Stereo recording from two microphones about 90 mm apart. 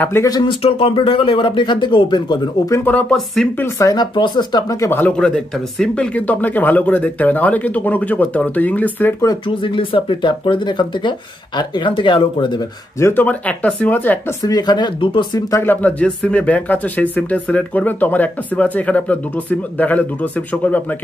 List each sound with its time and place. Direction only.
0.4 s speech: 80° left; by 2.5 s 55° left (ahead or behind)
2.8 s speech: 15° left (ahead or behind)
3.4 s speech: 5° left (ahead or behind)
3.8 s speech: 50° left (ahead or behind)
5.1 s speech: 10° left (ahead or behind)
6.1 s speech: 20° left (ahead or behind)
9.6 s speech: 80° left; by 12.6 s 60° left (ahead or behind)
13.0 s speech: 20° left (ahead or behind)
14.4 s speech: 50° left (ahead or behind)
15.6 s speech: 20° left (ahead or behind)